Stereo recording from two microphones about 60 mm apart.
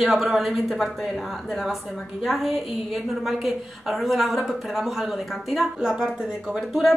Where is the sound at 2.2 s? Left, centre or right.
Centre.